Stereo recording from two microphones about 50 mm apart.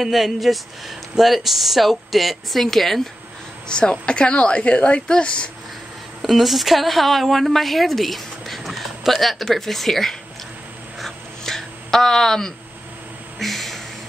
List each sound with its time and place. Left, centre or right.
0.0 s speech: centre
3.6 s a woman's voice: centre
6.2 s a woman's voice: centre
11.0 s a sound: centre